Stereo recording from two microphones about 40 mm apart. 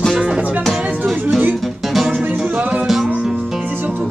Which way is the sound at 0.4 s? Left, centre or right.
Right.